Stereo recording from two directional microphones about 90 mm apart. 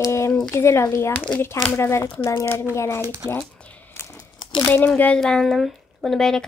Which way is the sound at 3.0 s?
40° right (ahead or behind).